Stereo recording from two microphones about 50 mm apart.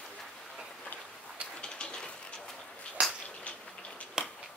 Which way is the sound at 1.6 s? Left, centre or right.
Centre.